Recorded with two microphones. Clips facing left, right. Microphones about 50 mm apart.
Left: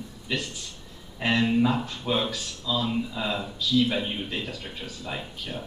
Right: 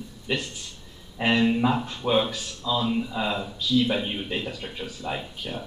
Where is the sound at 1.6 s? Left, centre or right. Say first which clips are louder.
Right 1 dB; centre.